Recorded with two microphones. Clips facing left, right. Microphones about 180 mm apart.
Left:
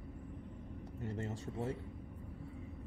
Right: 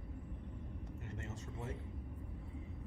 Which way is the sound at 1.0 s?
30° left (ahead or behind).